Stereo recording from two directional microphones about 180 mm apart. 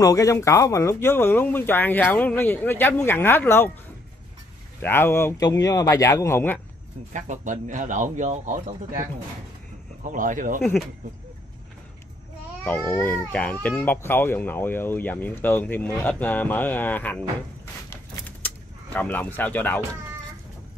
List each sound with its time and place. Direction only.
0.0 s speech: 20° left (ahead or behind)
4.8 s speech: 10° left (ahead or behind)
7.1 s speech: 45° right (ahead or behind)
10.0 s speech: 45° right (ahead or behind)
12.6 s speech: 10° left (ahead or behind)
18.9 s speech: 10° left (ahead or behind)